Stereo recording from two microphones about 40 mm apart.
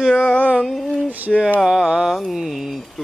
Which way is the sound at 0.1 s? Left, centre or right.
Left.